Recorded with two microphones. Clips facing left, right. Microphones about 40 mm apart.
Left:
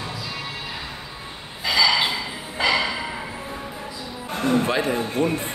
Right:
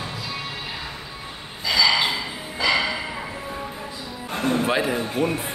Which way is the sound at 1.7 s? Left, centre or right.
Centre.